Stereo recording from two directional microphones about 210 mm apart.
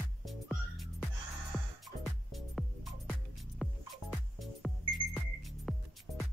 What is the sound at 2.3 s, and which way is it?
Music, centre (ahead or behind).